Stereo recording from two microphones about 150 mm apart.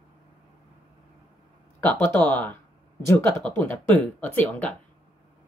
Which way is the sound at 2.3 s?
10° left (ahead or behind).